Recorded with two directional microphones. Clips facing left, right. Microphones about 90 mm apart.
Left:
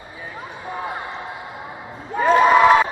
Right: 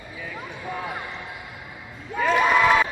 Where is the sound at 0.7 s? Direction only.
25° left (ahead or behind).